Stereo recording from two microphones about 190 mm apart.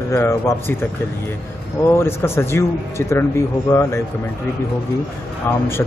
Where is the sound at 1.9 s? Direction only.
15° left (ahead or behind).